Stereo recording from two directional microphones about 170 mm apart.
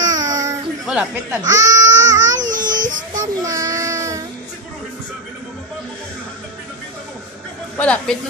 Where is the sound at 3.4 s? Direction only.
20° right (ahead or behind).